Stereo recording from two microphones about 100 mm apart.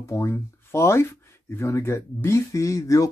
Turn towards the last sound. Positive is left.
turn(degrees=35)  # may be behind; listen again after turning